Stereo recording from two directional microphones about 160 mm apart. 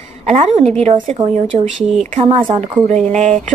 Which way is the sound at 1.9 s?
50° right (ahead or behind).